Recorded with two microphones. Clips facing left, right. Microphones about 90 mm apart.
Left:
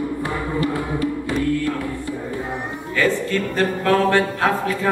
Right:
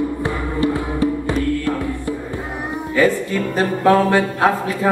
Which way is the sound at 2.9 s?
15° right (ahead or behind).